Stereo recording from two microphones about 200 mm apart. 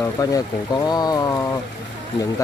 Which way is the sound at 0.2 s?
15° left (ahead or behind).